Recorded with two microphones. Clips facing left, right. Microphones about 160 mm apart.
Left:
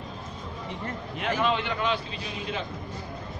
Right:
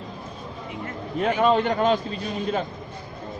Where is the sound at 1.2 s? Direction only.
40° right (ahead or behind).